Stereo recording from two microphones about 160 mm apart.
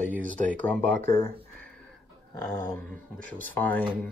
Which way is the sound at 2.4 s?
20° left (ahead or behind).